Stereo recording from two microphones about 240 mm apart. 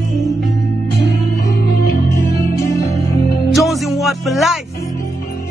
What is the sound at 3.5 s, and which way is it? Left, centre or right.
Speech, centre.